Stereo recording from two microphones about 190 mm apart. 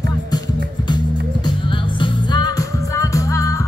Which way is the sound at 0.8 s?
25° left (ahead or behind).